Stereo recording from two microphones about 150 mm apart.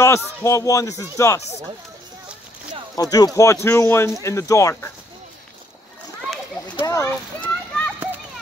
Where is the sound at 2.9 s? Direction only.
25° left (ahead or behind).